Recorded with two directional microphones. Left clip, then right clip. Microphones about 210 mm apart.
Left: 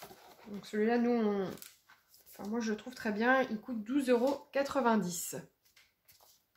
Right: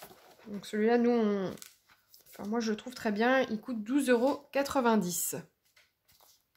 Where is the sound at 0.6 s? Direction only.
50° right (ahead or behind).